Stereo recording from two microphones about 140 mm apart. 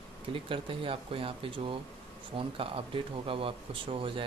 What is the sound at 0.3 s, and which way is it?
Speech, 40° right (ahead or behind).